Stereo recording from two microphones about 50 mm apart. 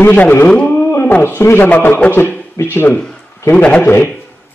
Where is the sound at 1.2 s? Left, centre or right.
Left.